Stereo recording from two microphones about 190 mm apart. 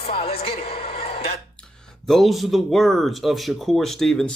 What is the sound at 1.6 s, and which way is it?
Speech, 5° left (ahead or behind).